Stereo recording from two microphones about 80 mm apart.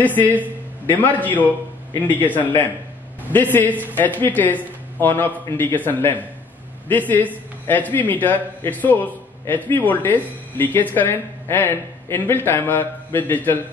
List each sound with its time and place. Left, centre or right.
0.0 s a man's voice: left